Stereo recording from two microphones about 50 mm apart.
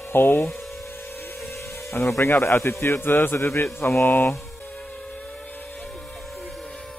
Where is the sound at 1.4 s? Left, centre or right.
Left.